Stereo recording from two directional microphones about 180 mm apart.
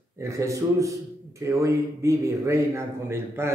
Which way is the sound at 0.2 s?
15° right (ahead or behind).